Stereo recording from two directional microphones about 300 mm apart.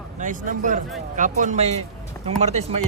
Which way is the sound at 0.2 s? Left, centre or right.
Right.